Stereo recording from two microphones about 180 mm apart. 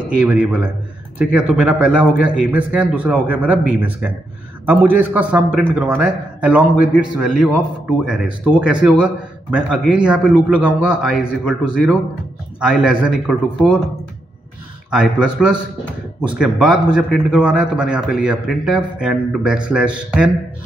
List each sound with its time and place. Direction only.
0.0 s a man's voice: 5° right (ahead or behind)
14.9 s a man's voice: 5° right (ahead or behind)